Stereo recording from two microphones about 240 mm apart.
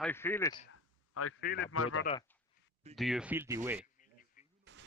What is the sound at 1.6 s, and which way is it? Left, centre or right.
Speech, left.